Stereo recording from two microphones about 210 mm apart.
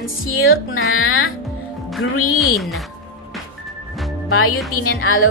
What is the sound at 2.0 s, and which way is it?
Speech, 90° left.